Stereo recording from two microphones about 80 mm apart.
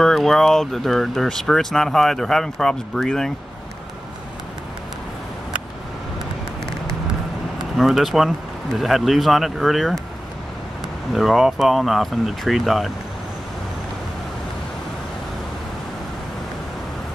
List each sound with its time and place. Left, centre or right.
0.0 s speech: centre
7.7 s speech: centre
11.1 s speech: centre